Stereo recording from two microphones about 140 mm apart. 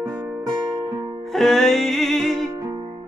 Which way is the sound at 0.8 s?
30° right (ahead or behind).